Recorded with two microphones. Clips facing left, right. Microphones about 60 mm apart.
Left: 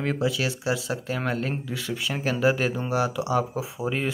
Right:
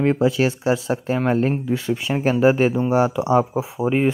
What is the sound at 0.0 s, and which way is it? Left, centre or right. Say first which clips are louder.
Speech: right 8 dB; right.